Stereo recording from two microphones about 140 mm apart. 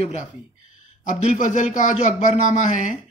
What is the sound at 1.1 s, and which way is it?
Speech, 60° left (ahead or behind).